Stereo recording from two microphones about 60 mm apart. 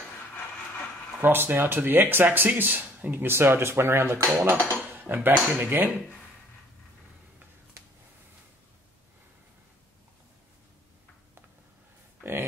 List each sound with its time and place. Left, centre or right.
1.2 s speech: right
4.4 s speech: right
12.2 s a sound: right